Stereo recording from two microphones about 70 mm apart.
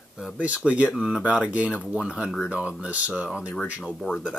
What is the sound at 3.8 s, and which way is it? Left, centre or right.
Speech, centre.